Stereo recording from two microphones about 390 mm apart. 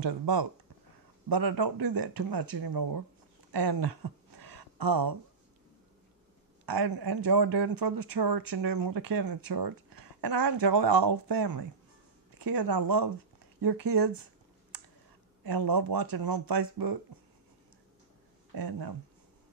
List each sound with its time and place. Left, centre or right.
0.0 s speech: right
3.5 s a sound: right
6.6 s speech: right
13.6 s a sound: right
15.4 s speech: right
18.5 s speech: right